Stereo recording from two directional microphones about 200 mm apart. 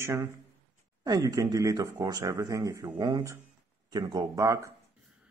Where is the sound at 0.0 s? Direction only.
15° right (ahead or behind).